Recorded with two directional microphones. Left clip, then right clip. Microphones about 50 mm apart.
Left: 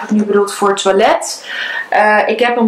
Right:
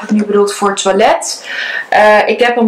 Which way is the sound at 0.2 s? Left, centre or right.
Right.